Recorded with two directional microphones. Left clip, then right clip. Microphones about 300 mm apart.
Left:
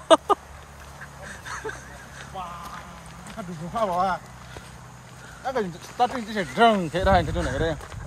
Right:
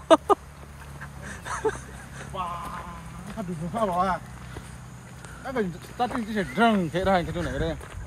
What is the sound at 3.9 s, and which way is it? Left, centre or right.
Speech, centre.